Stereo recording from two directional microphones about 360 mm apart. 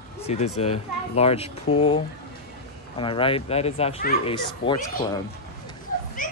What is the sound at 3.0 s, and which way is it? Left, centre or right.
Speech, centre.